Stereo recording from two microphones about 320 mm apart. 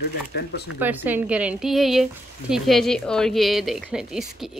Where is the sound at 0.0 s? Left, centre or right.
Left.